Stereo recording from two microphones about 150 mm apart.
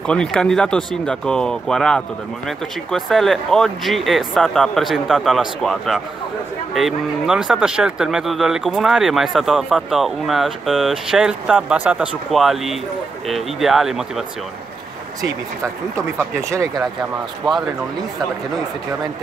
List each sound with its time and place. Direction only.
0.0 s speech: 5° left (ahead or behind)
16.2 s speech: 20° right (ahead or behind)